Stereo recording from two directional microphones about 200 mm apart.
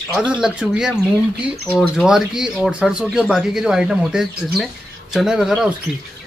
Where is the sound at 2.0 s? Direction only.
Centre (ahead or behind).